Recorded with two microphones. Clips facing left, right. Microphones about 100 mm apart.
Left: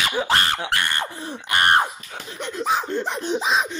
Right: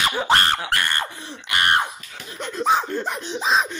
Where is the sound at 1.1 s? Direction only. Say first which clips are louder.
Left 3 dB; 45° left (ahead or behind).